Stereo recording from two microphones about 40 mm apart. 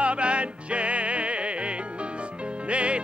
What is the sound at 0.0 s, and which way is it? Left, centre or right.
Music, right.